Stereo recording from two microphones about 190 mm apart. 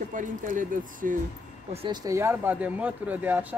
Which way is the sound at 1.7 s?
30° right (ahead or behind).